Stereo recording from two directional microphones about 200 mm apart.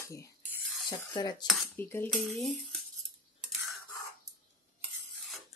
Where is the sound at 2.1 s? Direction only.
Centre (ahead or behind).